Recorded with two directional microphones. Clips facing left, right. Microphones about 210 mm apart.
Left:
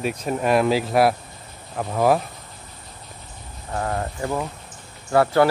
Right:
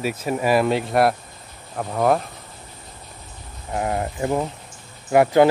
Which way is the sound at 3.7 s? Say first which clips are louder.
Right 2 dB; 15° right (ahead or behind).